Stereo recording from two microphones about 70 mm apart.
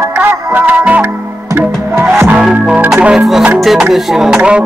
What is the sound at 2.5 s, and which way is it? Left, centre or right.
Music, centre.